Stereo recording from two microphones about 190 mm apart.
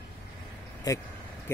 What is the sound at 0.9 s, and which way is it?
Speech, 20° left (ahead or behind).